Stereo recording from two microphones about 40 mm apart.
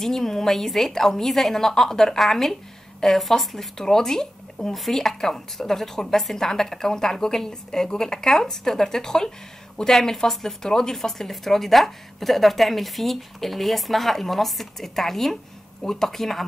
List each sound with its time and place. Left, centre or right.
0.0 s a woman's voice: centre